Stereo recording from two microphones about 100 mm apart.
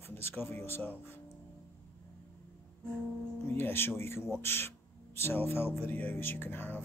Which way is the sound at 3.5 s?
25° left (ahead or behind).